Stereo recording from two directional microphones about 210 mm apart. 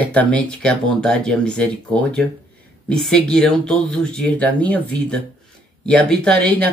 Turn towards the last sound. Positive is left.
turn(degrees=5)  # may be behind; listen again after turning